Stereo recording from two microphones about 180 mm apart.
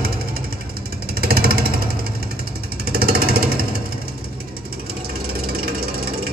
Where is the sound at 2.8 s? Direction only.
55° right (ahead or behind).